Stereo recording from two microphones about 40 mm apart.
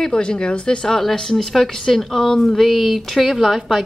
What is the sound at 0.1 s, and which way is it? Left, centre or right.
Speech, left.